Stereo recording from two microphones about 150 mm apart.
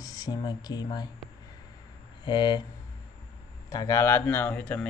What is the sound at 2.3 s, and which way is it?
Speech, 30° left (ahead or behind).